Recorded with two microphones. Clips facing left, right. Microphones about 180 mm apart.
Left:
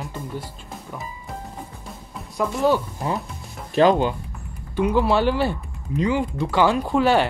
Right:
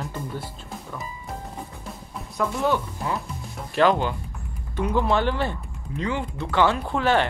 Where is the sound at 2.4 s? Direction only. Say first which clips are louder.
Left 3 dB; 10° left (ahead or behind).